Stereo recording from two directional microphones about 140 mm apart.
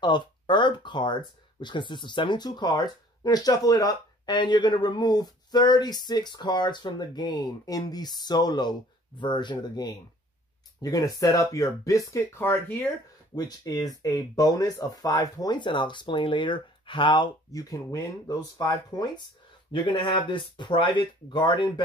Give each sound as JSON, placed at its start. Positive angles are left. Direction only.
{"t": 0.0, "sound": "speech", "side_deg": 35}
{"t": 13.4, "sound": "speech", "side_deg": 25}